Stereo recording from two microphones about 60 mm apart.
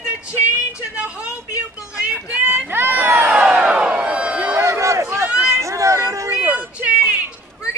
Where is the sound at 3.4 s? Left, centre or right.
Centre.